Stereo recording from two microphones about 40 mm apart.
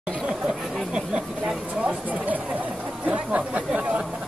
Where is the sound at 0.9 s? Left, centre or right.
Centre.